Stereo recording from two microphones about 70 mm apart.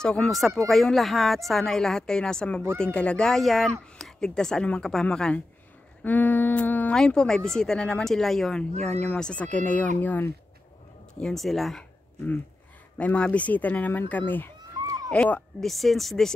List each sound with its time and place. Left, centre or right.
0.0 s speech: centre
0.3 s speech: centre; by 6.9 s left
6.9 s speech: centre
11.3 s speech: centre
12.9 s speech: centre
15.6 s speech: centre